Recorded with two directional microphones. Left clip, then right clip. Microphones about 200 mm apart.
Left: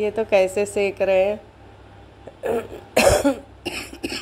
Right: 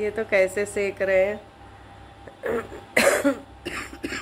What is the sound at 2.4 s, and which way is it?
Cough, 5° left (ahead or behind).